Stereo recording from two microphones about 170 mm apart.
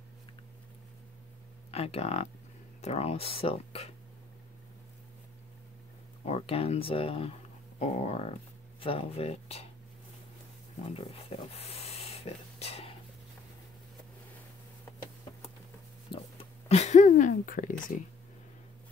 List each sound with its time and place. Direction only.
1.7 s speech: 35° left (ahead or behind)
6.2 s speech: 40° left (ahead or behind)
10.9 s a sound: 35° left (ahead or behind)
16.1 s speech: 35° left (ahead or behind)